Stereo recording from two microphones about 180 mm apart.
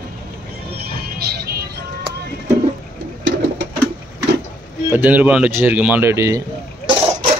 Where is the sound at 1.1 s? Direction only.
60° right (ahead or behind).